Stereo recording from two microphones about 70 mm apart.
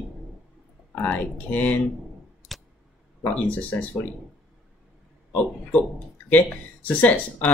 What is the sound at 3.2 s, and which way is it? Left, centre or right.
Speech, centre.